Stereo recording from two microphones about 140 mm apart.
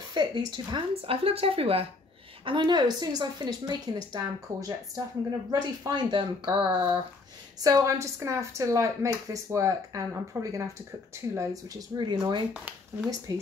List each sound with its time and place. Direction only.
0.1 s a woman's voice: 30° right (ahead or behind)
7.6 s a woman's voice: 20° right (ahead or behind)
12.0 s speech: 30° right (ahead or behind)
12.5 s speech: 5° right (ahead or behind)